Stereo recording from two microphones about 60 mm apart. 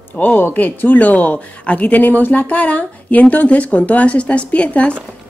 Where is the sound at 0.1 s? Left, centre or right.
Left.